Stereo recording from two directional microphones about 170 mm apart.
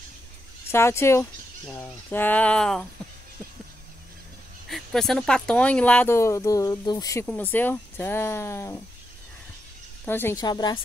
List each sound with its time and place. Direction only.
0.7 s speech: 15° left (ahead or behind)
4.6 s speech: centre (ahead or behind)
10.0 s a woman's voice: 15° left (ahead or behind)